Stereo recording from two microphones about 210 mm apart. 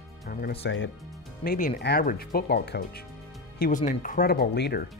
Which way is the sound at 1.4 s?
45° left (ahead or behind).